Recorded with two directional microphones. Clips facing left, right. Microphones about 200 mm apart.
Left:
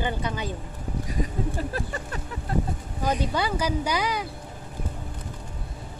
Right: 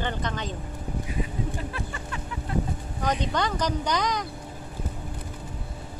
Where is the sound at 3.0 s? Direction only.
10° left (ahead or behind).